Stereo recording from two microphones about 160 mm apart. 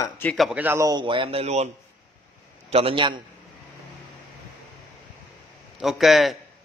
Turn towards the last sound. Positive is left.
turn(degrees=0)  # may be behind; listen again after turning